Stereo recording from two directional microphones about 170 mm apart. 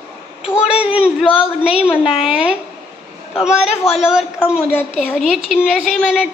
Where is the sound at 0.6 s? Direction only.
5° right (ahead or behind).